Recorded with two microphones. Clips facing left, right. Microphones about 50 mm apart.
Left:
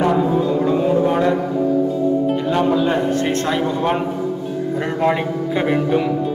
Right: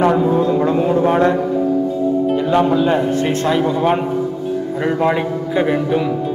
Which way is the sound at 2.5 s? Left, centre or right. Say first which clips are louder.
Right 3 dB; centre.